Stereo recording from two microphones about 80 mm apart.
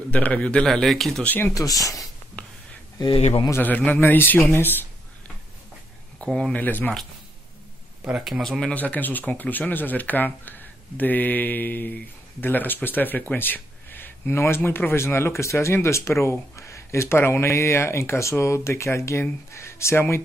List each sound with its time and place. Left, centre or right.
0.1 s a man's voice: centre
0.7 s speech: centre
1.2 s speech: left
1.5 s speech: left
2.4 s a sound: centre
3.0 s speech: left
3.5 s speech: left
6.1 s speech: centre
6.5 s speech: left
8.0 s speech: centre
8.7 s speech: centre; by 20.2 s left